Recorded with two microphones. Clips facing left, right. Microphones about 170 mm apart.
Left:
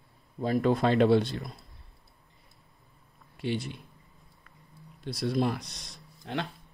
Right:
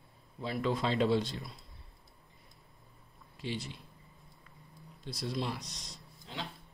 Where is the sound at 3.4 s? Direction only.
60° left (ahead or behind).